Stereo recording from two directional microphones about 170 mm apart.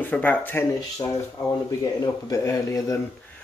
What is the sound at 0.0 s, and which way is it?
Speech, 10° left (ahead or behind).